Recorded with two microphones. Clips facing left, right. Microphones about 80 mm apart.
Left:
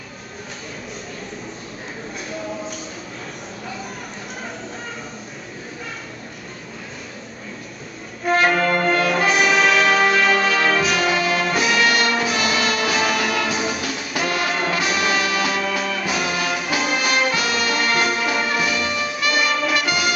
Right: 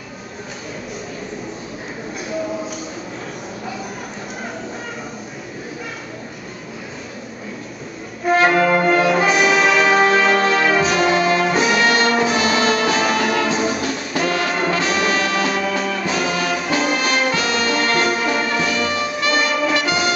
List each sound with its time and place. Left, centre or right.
8.3 s brass instrument: centre
10.9 s music: centre
11.8 s music: right
12.9 s music: centre
13.6 s brass instrument: centre
15.0 s music: centre
18.9 s brass instrument: right
19.7 s music: right